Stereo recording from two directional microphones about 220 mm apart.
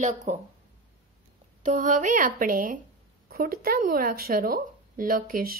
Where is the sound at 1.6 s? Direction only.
35° right (ahead or behind).